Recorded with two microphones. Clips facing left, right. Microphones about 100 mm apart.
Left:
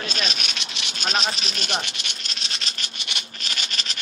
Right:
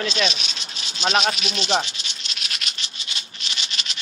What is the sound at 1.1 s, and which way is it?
Speech, 35° left (ahead or behind).